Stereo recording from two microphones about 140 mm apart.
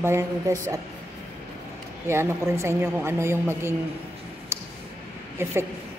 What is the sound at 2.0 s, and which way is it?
A woman's voice, 20° right (ahead or behind).